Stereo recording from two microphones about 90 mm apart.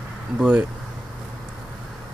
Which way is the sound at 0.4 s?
15° right (ahead or behind).